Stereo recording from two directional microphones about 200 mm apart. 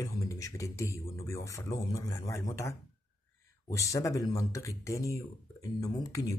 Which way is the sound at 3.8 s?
15° left (ahead or behind).